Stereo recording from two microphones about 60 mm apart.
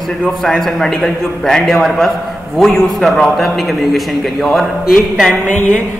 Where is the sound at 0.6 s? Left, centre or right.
Centre.